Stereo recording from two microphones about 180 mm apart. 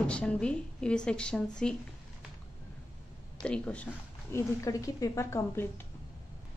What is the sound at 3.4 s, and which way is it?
Speech, 5° left (ahead or behind).